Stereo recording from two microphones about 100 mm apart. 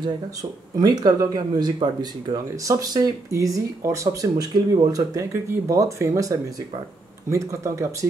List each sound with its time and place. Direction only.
0.0 s speech: 45° right (ahead or behind)